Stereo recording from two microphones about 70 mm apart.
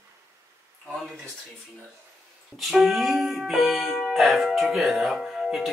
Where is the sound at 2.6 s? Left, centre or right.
Centre.